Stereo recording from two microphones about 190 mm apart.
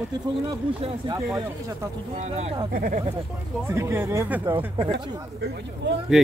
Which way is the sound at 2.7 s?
50° right (ahead or behind).